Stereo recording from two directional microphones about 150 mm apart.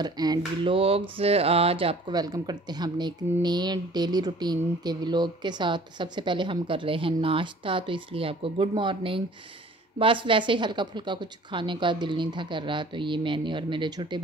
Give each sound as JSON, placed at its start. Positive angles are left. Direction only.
{"t": 0.0, "sound": "a sound", "side_deg": -25}
{"t": 0.7, "sound": "speech", "side_deg": -40}
{"t": 2.1, "sound": "speech", "side_deg": -25}